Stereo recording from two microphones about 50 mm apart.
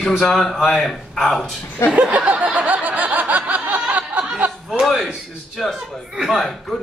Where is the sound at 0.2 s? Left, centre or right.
Centre.